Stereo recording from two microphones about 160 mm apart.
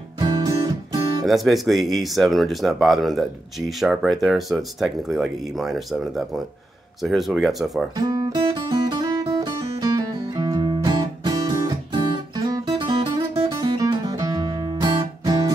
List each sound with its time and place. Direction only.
0.2 s music: 25° right (ahead or behind)
1.2 s speech: centre (ahead or behind)
7.9 s guitar: 25° right (ahead or behind)